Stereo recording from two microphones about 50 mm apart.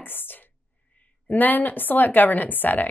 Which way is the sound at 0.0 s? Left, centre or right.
Left.